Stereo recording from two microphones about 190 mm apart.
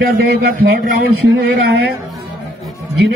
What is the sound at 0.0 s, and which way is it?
A man's voice, 50° right (ahead or behind).